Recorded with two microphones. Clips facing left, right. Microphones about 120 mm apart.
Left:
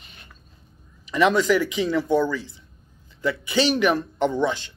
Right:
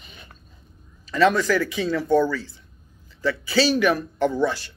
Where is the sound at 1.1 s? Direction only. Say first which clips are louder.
Even; 15° left (ahead or behind).